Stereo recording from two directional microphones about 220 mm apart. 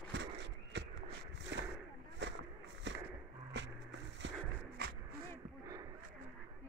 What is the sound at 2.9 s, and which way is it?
Skateboard, 55° right (ahead or behind).